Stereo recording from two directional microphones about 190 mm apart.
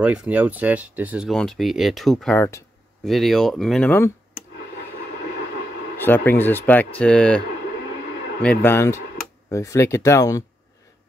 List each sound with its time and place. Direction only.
0.0 s speech: 5° right (ahead or behind); by 2.6 s 10° left (ahead or behind)
3.0 s speech: centre (ahead or behind)
5.9 s speech: 10° left (ahead or behind)